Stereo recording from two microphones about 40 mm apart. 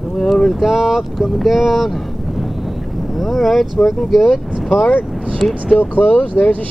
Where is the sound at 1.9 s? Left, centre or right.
Centre.